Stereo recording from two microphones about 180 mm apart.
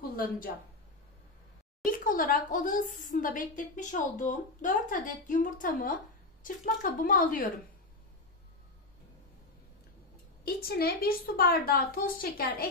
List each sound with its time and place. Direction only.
0.0 s a sound: 55° left (ahead or behind)
1.9 s speech: 50° left (ahead or behind)
10.4 s a woman's voice: 60° left (ahead or behind)